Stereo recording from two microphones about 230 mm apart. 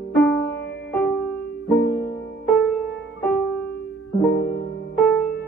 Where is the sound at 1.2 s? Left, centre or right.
Centre.